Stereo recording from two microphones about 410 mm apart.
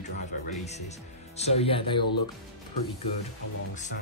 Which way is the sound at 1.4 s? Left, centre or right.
Centre.